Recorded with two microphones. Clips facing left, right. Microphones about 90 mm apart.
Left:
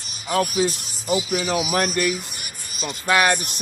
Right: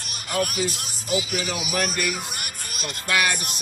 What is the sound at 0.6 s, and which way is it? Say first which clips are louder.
A man's voice: left 5 dB; 90° left.